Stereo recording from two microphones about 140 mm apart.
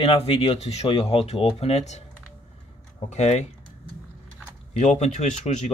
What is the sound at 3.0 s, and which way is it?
Speech, 55° left (ahead or behind).